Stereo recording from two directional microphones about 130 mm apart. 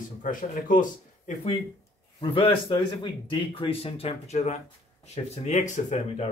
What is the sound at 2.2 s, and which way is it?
Speech, 40° left (ahead or behind).